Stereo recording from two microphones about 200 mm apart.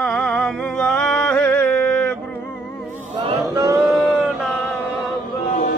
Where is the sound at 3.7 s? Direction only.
Centre (ahead or behind).